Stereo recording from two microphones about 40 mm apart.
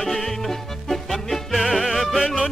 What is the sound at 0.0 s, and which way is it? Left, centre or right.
Music, centre.